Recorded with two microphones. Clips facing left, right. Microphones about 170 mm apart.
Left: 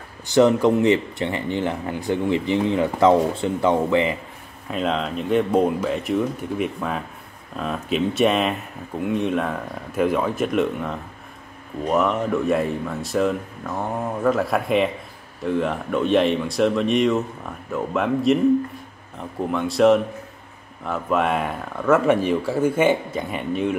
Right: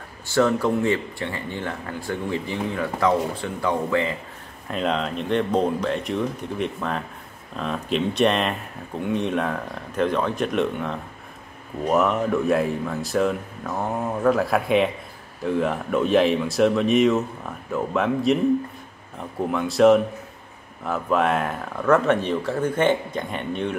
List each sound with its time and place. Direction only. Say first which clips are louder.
0.3 s speech: left 4 dB; 20° left (ahead or behind)
4.6 s speech: left 1 dB; centre (ahead or behind)